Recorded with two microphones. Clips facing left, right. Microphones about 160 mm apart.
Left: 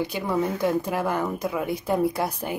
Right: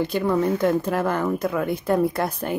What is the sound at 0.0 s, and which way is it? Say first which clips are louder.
Speech: right 4 dB; 10° left (ahead or behind).